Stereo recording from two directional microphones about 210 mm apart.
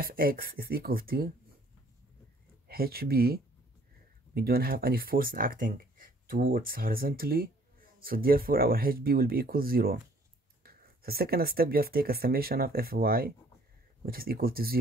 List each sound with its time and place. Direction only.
0.0 s speech: 45° right (ahead or behind)
2.7 s speech: 45° right (ahead or behind)